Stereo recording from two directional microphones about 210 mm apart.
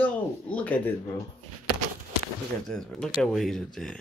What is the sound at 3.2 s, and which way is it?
Speech, centre (ahead or behind).